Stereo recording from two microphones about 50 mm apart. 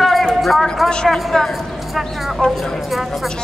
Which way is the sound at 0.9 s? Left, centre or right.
Centre.